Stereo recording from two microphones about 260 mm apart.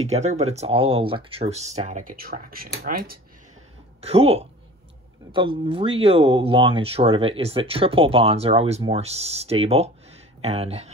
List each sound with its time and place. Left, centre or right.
0.0 s speech: right
4.0 s speech: right